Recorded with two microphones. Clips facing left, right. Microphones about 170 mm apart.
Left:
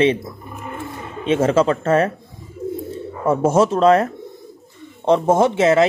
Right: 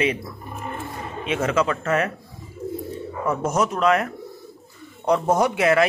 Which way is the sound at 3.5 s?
30° left (ahead or behind).